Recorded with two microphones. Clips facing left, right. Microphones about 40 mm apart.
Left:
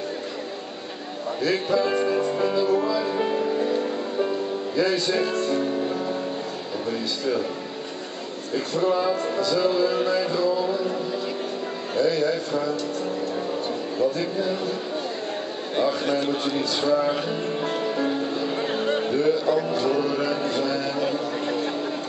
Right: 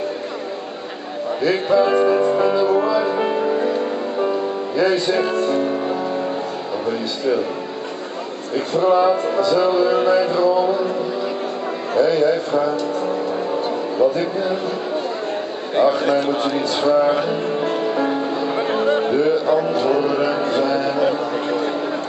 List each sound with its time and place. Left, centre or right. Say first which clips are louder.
1.4 s music: right 6 dB; centre
5.6 s music: right 4 dB; right
8.5 s music: right 7 dB; centre
11.9 s music: right 6 dB; centre
15.7 s music: right 7 dB; centre
18.9 s a man's voice: right 4 dB; centre
19.7 s a sound: right 5 dB; centre